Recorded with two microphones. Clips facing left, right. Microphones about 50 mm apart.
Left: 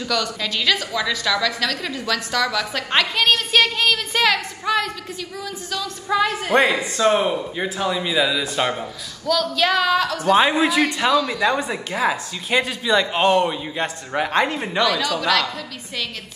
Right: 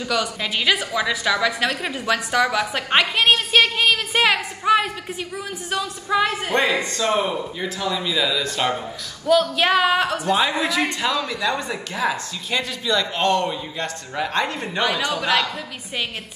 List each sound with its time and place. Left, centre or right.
0.0 s a woman's voice: centre
6.1 s speech: centre
6.5 s speech: left
7.1 s a man's voice: left
7.7 s speech: left
9.3 s a woman's voice: right
10.2 s a man's voice: left
11.0 s speech: left
11.4 s speech: left
13.5 s a man's voice: left
14.8 s a woman's voice: right